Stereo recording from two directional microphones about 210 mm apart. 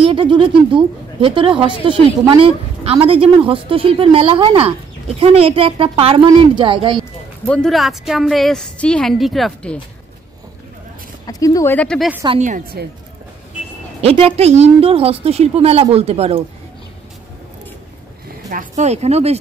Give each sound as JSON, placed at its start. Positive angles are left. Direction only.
{"t": 0.0, "sound": "speech", "side_deg": -25}
{"t": 7.0, "sound": "speech", "side_deg": 5}
{"t": 11.2, "sound": "speech", "side_deg": 15}
{"t": 12.3, "sound": "speech", "side_deg": -35}
{"t": 14.0, "sound": "speech", "side_deg": -30}
{"t": 18.5, "sound": "speech", "side_deg": -35}